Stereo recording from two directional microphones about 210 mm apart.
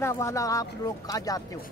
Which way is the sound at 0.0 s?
15° left (ahead or behind).